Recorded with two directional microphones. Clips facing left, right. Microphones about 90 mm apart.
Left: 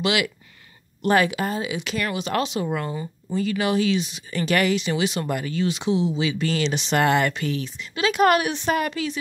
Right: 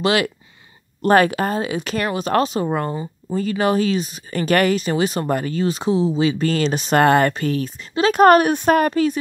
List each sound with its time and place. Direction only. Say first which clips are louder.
0.0 s speech: right 5 dB; 40° right (ahead or behind)